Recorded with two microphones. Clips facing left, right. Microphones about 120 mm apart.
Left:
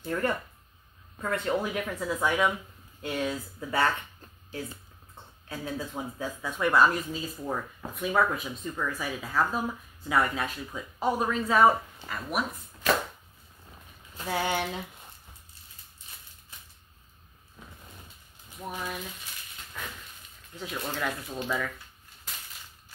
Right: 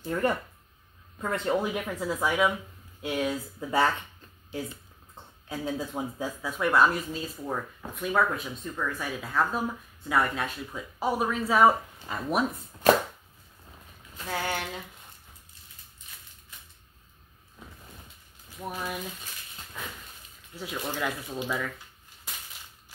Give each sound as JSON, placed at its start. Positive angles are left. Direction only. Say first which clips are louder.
{"t": 0.0, "sound": "speech", "louder": "right 2 dB", "side_deg": -20}
{"t": 5.1, "sound": "speech", "louder": "right 3 dB", "side_deg": -15}
{"t": 12.1, "sound": "speech", "louder": "right 4 dB", "side_deg": -25}
{"t": 14.3, "sound": "speech", "louder": "left 3 dB", "side_deg": 15}
{"t": 18.6, "sound": "speech", "louder": "right 1 dB", "side_deg": -5}
{"t": 20.5, "sound": "speech", "louder": "right 1 dB", "side_deg": -5}